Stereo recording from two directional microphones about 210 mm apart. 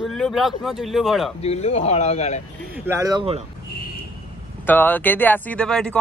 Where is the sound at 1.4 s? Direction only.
30° left (ahead or behind).